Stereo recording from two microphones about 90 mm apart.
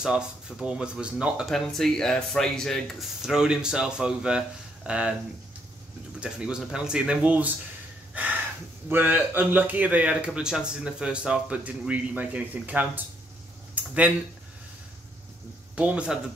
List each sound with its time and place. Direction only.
0.0 s speech: 10° right (ahead or behind)
6.1 s speech: 10° right (ahead or behind)
8.1 s a sound: 15° right (ahead or behind)
8.8 s speech: 25° right (ahead or behind)
15.7 s speech: 10° right (ahead or behind)